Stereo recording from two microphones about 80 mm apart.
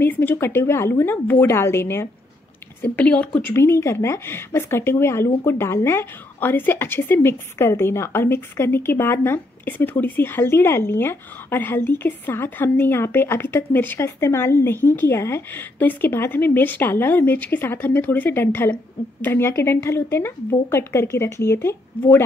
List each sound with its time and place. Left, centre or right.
0.0 s a woman's voice: left
2.8 s a woman's voice: centre
3.4 s a woman's voice: left